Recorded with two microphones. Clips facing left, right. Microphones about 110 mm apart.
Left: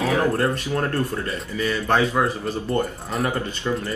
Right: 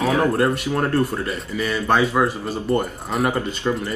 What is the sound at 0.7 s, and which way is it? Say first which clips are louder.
Speech: right 3 dB; 20° right (ahead or behind).